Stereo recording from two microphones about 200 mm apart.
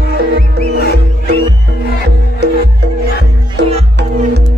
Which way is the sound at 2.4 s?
55° right (ahead or behind).